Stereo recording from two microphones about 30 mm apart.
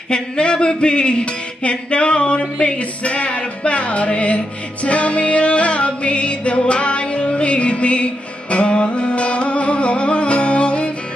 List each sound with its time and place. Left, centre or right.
0.1 s music: left